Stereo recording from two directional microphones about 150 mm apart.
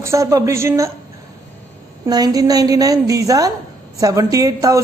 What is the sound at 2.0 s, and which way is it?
A woman's voice, 25° right (ahead or behind).